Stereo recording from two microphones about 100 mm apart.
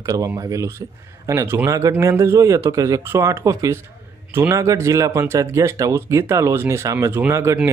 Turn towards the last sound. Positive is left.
turn(degrees=-25)  # may be behind; listen again after turning